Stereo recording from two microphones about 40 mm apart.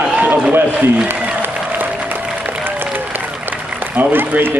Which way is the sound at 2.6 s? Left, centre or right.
Right.